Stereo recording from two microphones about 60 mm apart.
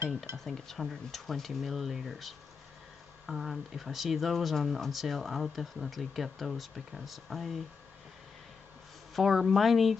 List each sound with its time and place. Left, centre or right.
0.4 s speech: centre
9.1 s speech: centre